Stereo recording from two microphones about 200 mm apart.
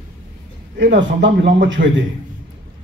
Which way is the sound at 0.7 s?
65° right (ahead or behind).